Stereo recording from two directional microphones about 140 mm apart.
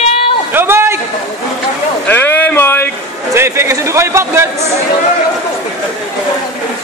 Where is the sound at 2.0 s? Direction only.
15° left (ahead or behind).